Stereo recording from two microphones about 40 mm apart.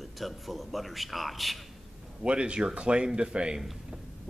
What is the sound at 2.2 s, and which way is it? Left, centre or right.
Speech, right.